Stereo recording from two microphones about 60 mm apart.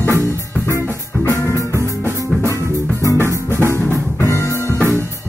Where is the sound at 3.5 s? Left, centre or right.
Right.